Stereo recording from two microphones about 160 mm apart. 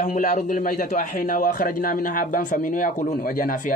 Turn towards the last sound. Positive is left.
turn(degrees=55)  # may be behind; listen again after turning